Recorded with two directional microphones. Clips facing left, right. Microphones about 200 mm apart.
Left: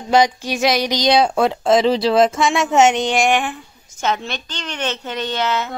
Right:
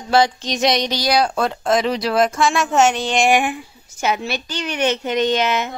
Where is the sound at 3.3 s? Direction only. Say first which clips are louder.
Right 2 dB; 10° right (ahead or behind).